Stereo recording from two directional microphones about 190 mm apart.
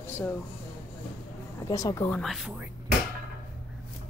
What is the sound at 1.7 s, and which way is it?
Speech, 15° left (ahead or behind).